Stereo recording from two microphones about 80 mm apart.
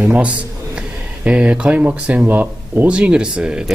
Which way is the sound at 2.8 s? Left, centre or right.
Centre.